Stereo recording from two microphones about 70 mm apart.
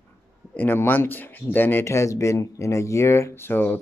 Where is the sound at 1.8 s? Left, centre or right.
Left.